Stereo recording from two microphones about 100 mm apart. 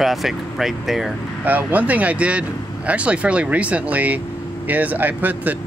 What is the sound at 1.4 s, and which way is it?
Speech, 15° right (ahead or behind).